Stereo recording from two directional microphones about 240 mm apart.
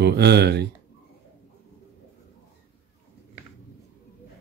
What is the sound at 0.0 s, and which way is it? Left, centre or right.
Speech, right.